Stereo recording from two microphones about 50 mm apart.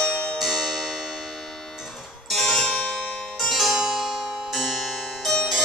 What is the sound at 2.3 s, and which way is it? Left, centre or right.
Music, centre.